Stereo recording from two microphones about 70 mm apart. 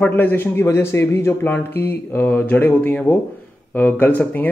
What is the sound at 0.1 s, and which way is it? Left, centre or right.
A man's voice, left.